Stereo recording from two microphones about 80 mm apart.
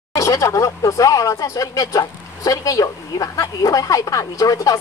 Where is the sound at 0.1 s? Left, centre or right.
Left.